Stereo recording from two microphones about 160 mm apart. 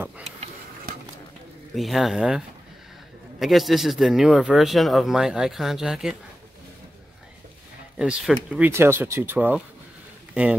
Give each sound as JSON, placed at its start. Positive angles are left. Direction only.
{"t": 1.8, "sound": "speech", "side_deg": 0}
{"t": 8.0, "sound": "a man's voice", "side_deg": -5}